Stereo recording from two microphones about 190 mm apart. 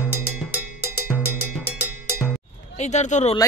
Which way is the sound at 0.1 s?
50° left (ahead or behind).